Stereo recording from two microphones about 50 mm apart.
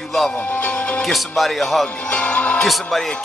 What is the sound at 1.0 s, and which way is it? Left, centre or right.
Speech, centre.